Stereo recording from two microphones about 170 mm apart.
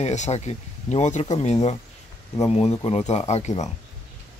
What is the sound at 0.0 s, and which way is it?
Speech, 40° left (ahead or behind).